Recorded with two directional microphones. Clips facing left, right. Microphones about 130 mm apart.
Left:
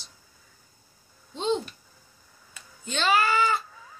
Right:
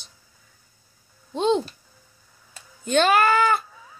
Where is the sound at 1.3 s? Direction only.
60° right (ahead or behind).